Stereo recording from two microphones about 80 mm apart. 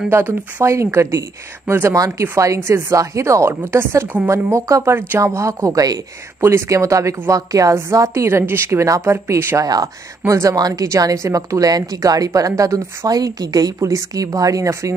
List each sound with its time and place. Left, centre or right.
0.1 s a woman's voice: right
1.0 s a woman's voice: right
6.4 s a woman's voice: right
9.6 s a woman's voice: right
10.2 s a woman's voice: right
13.7 s a woman's voice: right